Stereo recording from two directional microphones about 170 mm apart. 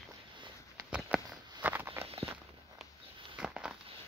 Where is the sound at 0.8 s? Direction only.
5° right (ahead or behind).